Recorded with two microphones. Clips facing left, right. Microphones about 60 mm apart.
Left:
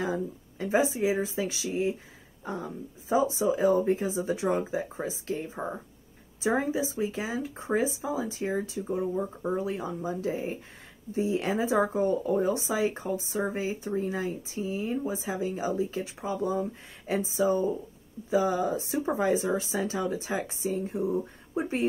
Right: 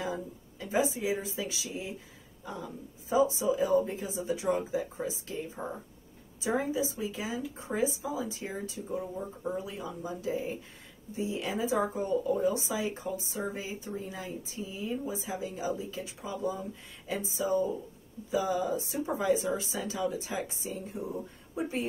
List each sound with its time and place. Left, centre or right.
0.0 s speech: left